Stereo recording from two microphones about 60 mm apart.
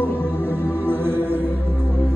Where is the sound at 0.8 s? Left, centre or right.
Right.